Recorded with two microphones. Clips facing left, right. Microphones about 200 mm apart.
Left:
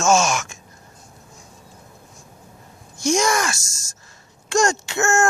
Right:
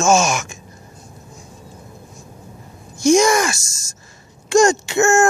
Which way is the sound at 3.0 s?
15° right (ahead or behind).